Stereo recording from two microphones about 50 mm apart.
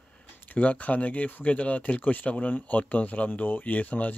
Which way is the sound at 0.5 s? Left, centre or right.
Left.